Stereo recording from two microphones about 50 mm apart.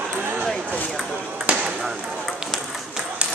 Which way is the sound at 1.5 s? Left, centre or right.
Right.